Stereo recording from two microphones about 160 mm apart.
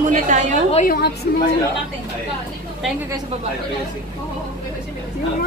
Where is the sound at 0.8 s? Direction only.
80° left.